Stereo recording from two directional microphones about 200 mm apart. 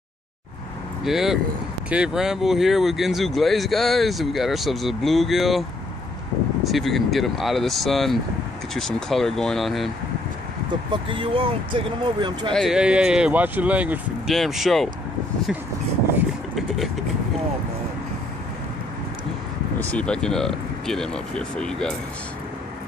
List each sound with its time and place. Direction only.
1.0 s speech: centre (ahead or behind)
10.7 s speech: 25° right (ahead or behind)
12.5 s speech: centre (ahead or behind)
16.5 s vehicle: centre (ahead or behind)
19.9 s speech: 5° left (ahead or behind)